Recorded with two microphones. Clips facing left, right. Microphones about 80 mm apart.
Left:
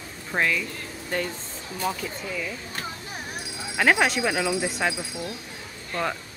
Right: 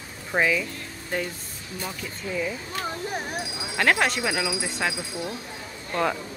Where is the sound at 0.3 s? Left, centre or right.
Centre.